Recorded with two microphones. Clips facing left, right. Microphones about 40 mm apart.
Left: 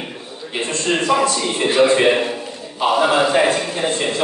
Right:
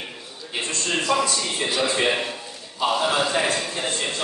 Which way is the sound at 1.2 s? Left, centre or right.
Left.